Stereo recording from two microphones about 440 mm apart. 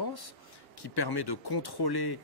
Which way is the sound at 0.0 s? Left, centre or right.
Left.